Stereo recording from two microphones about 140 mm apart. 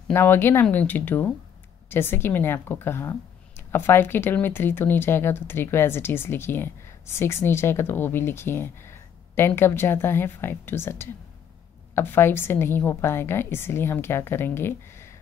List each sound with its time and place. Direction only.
0.1 s a woman's voice: 15° left (ahead or behind)